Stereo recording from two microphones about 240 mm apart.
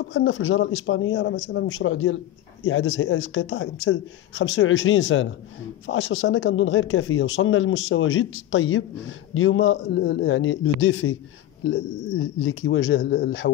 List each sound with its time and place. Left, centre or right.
0.0 s speech: left